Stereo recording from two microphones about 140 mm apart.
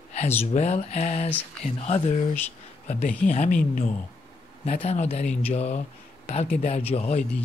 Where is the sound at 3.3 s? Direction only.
65° left (ahead or behind).